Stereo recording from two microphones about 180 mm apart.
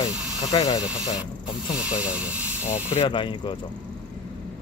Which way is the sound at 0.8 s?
5° right (ahead or behind).